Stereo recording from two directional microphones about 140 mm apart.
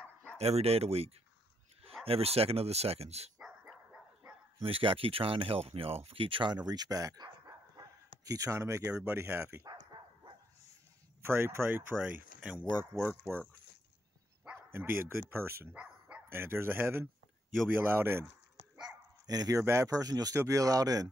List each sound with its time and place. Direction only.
0.4 s speech: 45° right (ahead or behind)
3.3 s dog: 5° right (ahead or behind)
4.6 s speech: 40° right (ahead or behind)
8.3 s speech: 25° right (ahead or behind)
11.2 s speech: 15° right (ahead or behind)
14.4 s speech: 15° right (ahead or behind)
19.2 s speech: 25° right (ahead or behind)